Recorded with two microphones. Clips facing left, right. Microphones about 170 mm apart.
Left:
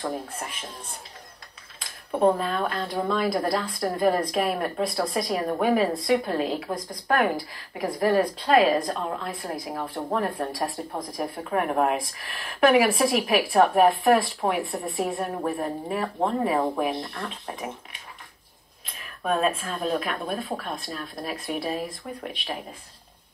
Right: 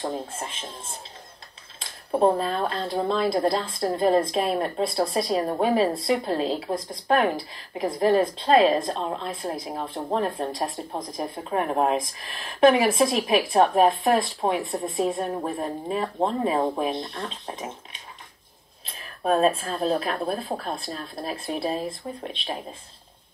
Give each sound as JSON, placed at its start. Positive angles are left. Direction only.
{"t": 0.0, "sound": "speech", "side_deg": -25}